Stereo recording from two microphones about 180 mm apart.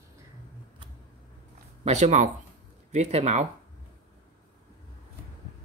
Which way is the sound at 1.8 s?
40° right (ahead or behind).